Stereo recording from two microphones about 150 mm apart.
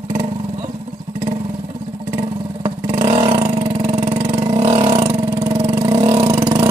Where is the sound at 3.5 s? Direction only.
50° right (ahead or behind).